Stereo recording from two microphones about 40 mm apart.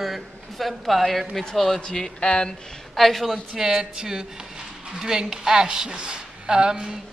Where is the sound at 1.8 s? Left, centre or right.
Left.